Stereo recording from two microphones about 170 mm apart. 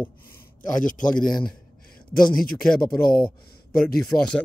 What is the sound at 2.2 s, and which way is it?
Speech, 55° left (ahead or behind).